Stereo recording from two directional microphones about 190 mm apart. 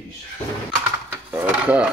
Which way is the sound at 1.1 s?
10° right (ahead or behind).